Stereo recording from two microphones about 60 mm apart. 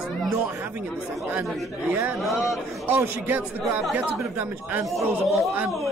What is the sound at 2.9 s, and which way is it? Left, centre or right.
Speech, right.